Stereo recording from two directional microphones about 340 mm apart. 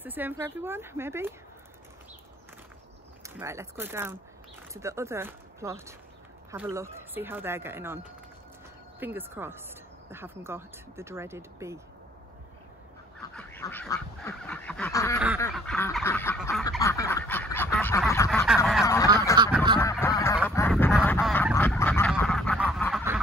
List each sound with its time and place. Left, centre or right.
0.0 s speech: centre
3.3 s speech: centre
9.0 s speech: centre
13.3 s duck: centre
19.3 s goose: centre
19.8 s goose: centre